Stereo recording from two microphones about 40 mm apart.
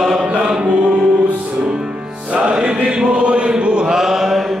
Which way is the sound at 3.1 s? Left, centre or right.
Right.